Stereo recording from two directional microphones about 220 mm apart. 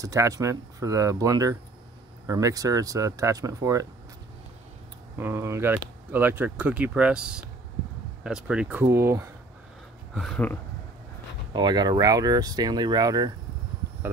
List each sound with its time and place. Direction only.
0.0 s speech: 15° right (ahead or behind)
5.1 s speech: 10° right (ahead or behind)
10.1 s speech: 5° left (ahead or behind)
11.5 s speech: 20° right (ahead or behind)